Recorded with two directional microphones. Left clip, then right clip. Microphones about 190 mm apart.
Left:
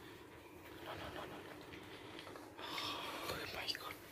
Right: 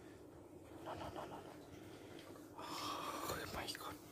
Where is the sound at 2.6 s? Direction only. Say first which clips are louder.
Left 1 dB; 15° right (ahead or behind).